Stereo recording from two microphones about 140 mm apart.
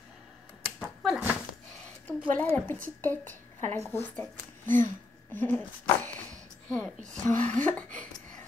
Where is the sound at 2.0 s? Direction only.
10° left (ahead or behind).